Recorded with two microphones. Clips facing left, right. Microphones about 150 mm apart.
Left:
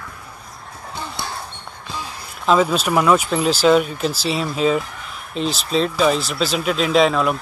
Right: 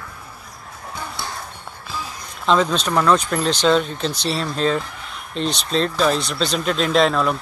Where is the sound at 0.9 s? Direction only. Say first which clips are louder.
Left 1 dB; 20° left (ahead or behind).